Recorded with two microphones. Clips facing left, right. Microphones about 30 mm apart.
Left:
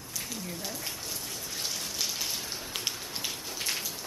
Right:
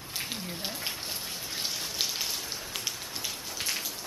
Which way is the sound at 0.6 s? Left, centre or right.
Right.